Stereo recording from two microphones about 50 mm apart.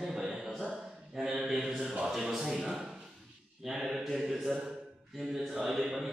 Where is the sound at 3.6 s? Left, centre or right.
Centre.